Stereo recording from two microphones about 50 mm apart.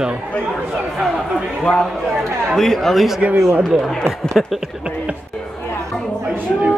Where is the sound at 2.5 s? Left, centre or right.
Centre.